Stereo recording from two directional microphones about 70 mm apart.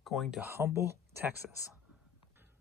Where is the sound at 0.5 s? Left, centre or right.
Right.